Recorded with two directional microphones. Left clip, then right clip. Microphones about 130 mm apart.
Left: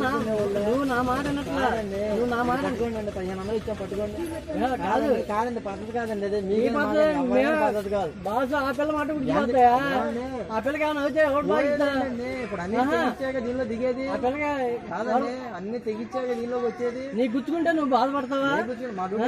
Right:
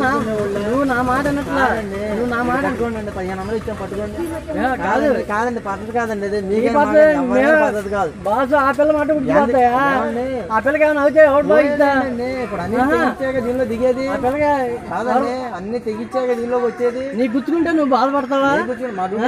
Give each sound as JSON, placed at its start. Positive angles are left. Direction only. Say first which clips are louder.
{"t": 1.1, "sound": "a man's voice", "louder": "right 9 dB", "side_deg": 20}
{"t": 4.6, "sound": "a man's voice", "louder": "right 7 dB", "side_deg": 20}
{"t": 17.2, "sound": "a man's voice", "louder": "right 6 dB", "side_deg": 20}